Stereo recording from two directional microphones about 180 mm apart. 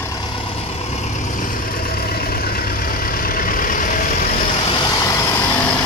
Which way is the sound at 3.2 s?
50° left (ahead or behind).